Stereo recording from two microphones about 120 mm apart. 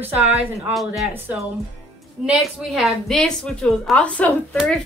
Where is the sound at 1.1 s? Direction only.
15° right (ahead or behind).